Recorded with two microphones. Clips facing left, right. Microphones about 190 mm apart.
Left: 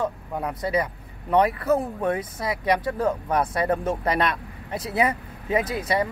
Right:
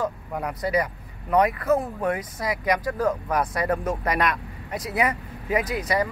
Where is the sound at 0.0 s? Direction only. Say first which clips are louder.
Left 1 dB; 25° left (ahead or behind).